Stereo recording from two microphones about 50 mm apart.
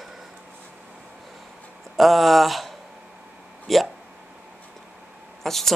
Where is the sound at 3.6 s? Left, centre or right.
Centre.